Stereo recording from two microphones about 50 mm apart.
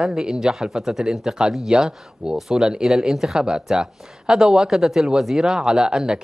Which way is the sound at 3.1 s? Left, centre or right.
Centre.